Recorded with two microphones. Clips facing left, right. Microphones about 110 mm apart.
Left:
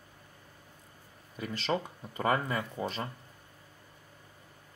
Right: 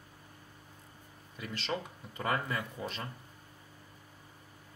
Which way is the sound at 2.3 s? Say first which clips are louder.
Left 4 dB; 20° left (ahead or behind).